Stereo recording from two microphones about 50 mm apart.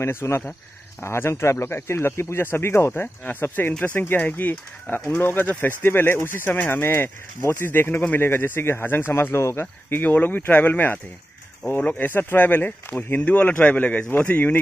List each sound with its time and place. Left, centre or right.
0.0 s speech: left
2.9 s a man's voice: left
10.0 s a man's voice: left